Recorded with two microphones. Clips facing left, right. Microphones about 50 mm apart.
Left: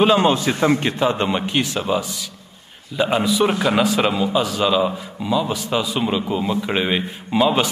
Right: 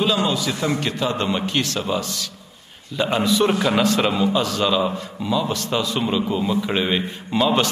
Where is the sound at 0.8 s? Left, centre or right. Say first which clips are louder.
Left 3 dB; left.